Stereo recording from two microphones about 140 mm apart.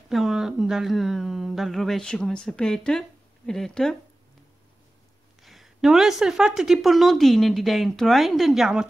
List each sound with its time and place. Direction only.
0.1 s speech: centre (ahead or behind)
5.4 s speech: centre (ahead or behind)